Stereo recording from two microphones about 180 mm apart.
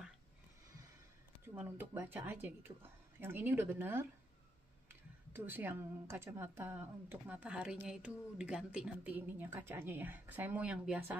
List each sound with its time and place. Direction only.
1.4 s a woman's voice: 10° right (ahead or behind)
5.3 s a woman's voice: 10° right (ahead or behind)